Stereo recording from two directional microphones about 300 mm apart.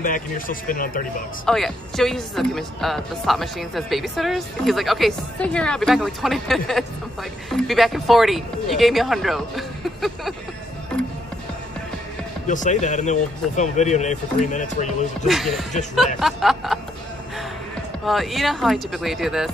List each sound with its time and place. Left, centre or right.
0.0 s speech: left
1.4 s speech: centre
12.4 s speech: left
15.2 s speech: centre
18.0 s speech: centre